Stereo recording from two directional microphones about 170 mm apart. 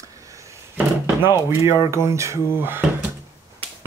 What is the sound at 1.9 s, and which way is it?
Speech, 15° right (ahead or behind).